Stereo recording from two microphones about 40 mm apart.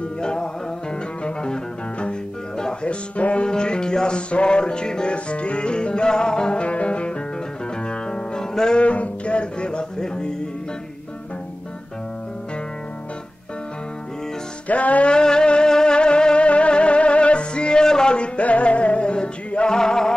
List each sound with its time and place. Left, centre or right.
0.2 s music: centre
3.4 s music: left
8.8 s music: left
14.7 s music: left
15.0 s music: left